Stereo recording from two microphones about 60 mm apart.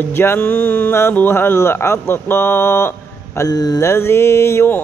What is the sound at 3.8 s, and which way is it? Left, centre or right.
Mantra, left.